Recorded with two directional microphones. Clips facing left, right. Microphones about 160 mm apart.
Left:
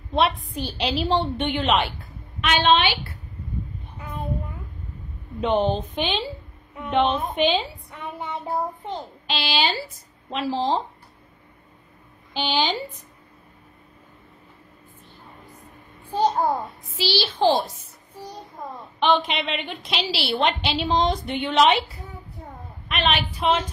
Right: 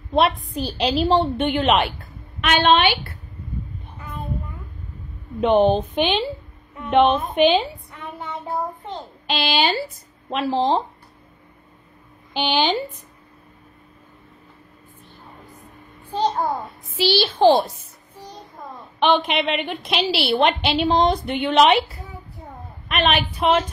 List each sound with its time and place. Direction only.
0.1 s a woman's voice: 55° right (ahead or behind)
0.6 s a woman's voice: 40° right (ahead or behind)
1.5 s a woman's voice: 55° right (ahead or behind)
5.4 s a woman's voice: 60° right (ahead or behind)
9.3 s a woman's voice: 55° right (ahead or behind)
12.4 s a woman's voice: 65° right (ahead or behind)
17.0 s a woman's voice: 55° right (ahead or behind)
18.9 s a woman's voice: 60° right (ahead or behind)
22.8 s a woman's voice: 50° right (ahead or behind)